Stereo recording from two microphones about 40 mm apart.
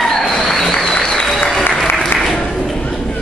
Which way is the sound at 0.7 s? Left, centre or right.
Centre.